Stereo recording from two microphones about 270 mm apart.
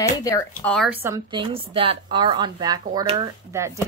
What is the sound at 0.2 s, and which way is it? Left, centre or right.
Speech, centre.